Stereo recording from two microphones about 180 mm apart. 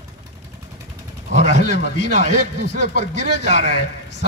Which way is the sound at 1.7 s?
70° left (ahead or behind).